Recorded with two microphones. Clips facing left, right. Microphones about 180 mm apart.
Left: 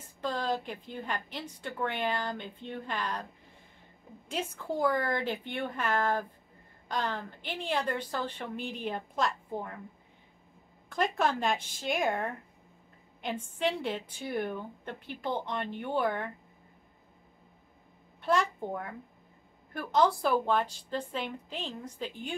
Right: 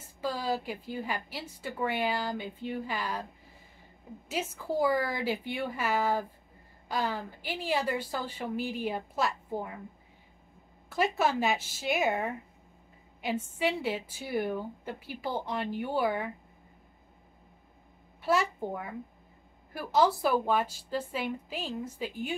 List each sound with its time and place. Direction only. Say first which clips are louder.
0.2 s a woman's voice: even; 5° right (ahead or behind)
4.3 s a woman's voice: right 1 dB; 5° right (ahead or behind)
10.9 s a woman's voice: right 1 dB; 5° right (ahead or behind)
18.2 s a woman's voice: right 1 dB; 5° right (ahead or behind)